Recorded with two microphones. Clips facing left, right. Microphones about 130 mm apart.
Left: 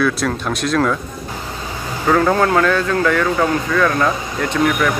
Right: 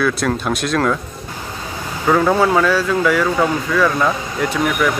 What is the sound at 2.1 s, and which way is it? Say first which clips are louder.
Speech: even; 5° right (ahead or behind).